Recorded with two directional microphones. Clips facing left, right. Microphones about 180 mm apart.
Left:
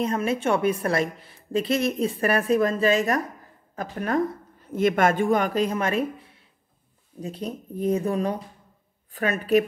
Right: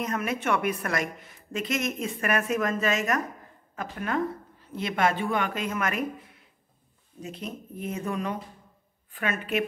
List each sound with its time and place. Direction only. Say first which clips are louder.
0.0 s a woman's voice: left 5 dB; 30° left (ahead or behind)
4.7 s a woman's voice: left 6 dB; 50° left (ahead or behind)